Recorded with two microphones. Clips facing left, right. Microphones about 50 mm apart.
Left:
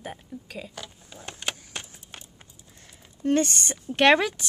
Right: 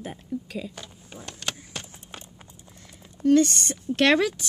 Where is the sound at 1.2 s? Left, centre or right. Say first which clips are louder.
Left 1 dB; centre.